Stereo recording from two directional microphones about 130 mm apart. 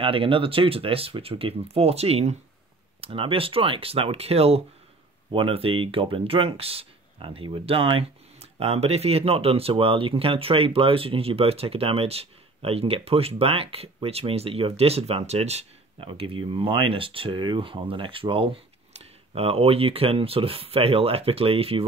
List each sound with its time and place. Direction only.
0.0 s speech: 45° right (ahead or behind)